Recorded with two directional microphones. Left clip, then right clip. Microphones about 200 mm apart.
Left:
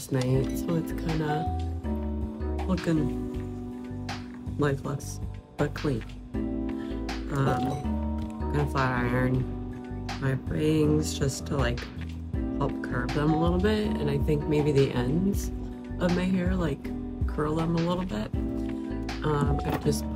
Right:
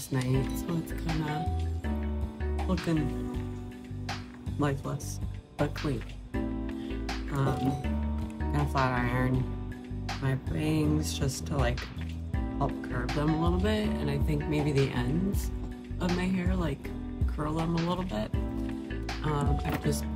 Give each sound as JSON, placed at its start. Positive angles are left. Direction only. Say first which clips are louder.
{"t": 0.1, "sound": "speech", "louder": "left 4 dB", "side_deg": 5}
{"t": 2.6, "sound": "speech", "louder": "left 2 dB", "side_deg": 0}
{"t": 4.1, "sound": "music", "louder": "left 1 dB", "side_deg": 0}
{"t": 5.6, "sound": "speech", "louder": "left 3 dB", "side_deg": 0}
{"t": 8.5, "sound": "speech", "louder": "left 1 dB", "side_deg": 0}
{"t": 16.1, "sound": "speech", "louder": "left 2 dB", "side_deg": 5}
{"t": 19.2, "sound": "speech", "louder": "left 4 dB", "side_deg": 15}